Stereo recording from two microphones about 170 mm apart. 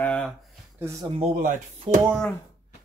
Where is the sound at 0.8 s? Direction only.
15° right (ahead or behind).